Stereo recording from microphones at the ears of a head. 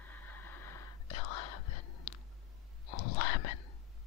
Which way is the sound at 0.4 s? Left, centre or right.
Left.